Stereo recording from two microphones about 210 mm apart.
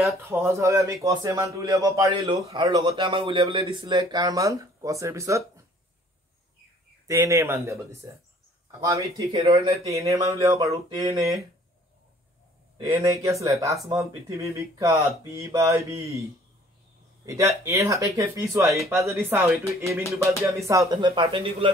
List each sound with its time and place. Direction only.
0.2 s speech: 10° right (ahead or behind)
7.1 s speech: 15° right (ahead or behind)
12.7 s speech: 20° right (ahead or behind)
17.3 s speech: 15° right (ahead or behind)